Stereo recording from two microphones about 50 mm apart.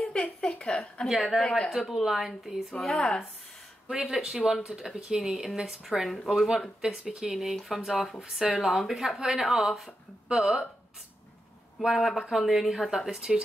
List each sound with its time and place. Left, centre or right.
0.0 s a sound: centre
1.0 s speech: centre
2.8 s speech: centre
3.8 s speech: right
4.1 s speech: centre
11.8 s speech: centre